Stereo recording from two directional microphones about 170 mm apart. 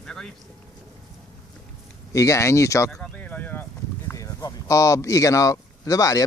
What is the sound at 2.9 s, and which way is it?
Speech, 5° left (ahead or behind).